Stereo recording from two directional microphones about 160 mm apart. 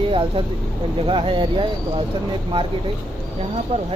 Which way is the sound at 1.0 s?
30° right (ahead or behind).